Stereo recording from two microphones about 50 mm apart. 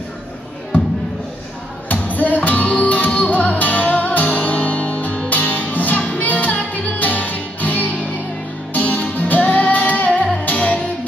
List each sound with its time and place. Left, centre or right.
1.9 s music: left